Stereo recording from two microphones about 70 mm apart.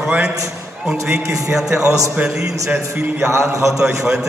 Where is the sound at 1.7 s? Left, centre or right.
Right.